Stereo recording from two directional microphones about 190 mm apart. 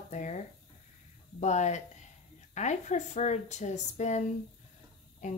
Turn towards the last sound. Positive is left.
turn(degrees=40)  # may be behind; listen again after turning